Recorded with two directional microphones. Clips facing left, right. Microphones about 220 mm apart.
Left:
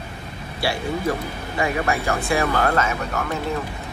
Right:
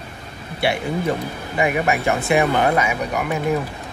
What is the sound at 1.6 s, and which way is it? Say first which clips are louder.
Speech: right 3 dB; 20° right (ahead or behind).